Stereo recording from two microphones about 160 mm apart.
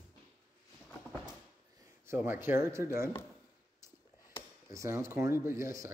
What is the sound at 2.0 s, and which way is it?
Speech, 10° right (ahead or behind).